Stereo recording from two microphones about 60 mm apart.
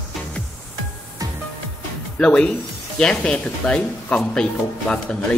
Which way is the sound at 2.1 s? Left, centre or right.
Centre.